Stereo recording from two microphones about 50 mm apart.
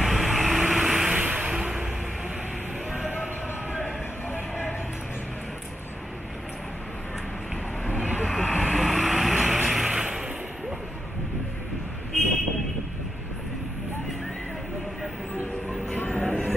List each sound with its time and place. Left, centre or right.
0.0 s vehicle: centre
1.1 s vehicle: right
1.5 s music: centre
4.3 s a sound: left
7.8 s vehicle: left
8.4 s vehicle: centre
8.7 s vehicle: centre
16.1 s a sound: centre